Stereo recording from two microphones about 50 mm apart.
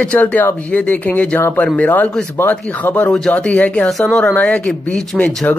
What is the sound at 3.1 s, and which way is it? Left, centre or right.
Speech, centre.